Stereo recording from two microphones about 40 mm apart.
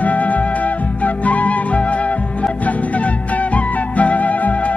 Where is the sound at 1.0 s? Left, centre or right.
Left.